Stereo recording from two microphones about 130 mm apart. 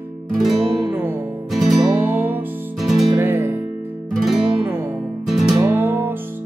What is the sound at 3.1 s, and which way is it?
Music, 20° right (ahead or behind).